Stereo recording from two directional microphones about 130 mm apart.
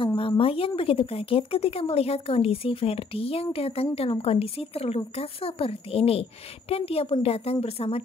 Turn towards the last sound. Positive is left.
turn(degrees=50)  # may be behind; listen again after turning